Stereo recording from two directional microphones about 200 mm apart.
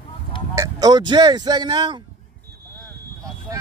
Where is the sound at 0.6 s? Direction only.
20° right (ahead or behind).